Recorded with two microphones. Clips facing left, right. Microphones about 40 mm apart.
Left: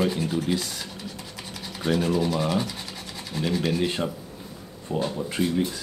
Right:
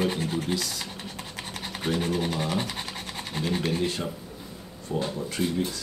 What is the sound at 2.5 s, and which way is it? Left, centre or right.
Scratch, right.